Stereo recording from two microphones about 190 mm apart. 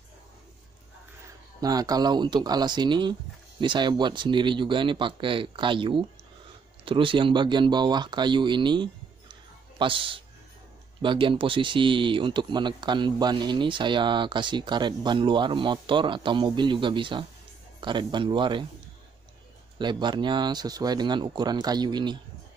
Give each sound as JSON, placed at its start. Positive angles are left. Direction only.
{"t": 1.6, "sound": "speech", "side_deg": -20}
{"t": 19.8, "sound": "speech", "side_deg": -25}